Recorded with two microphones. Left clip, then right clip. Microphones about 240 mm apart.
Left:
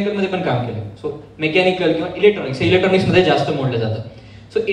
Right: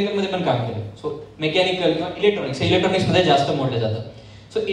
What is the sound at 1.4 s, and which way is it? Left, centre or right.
A man's voice, centre.